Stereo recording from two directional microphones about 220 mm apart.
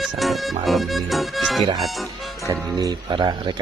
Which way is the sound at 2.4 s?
20° right (ahead or behind).